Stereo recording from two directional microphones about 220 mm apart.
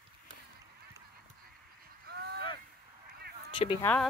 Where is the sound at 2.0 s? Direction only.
45° right (ahead or behind).